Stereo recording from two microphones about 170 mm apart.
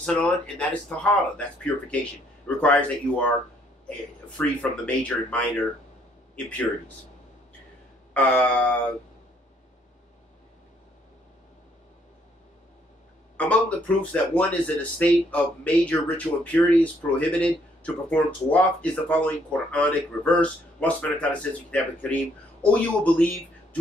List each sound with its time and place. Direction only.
0.0 s speech: 5° left (ahead or behind)
4.4 s speech: 10° left (ahead or behind)
8.1 s speech: 10° left (ahead or behind)
13.4 s speech: 10° left (ahead or behind)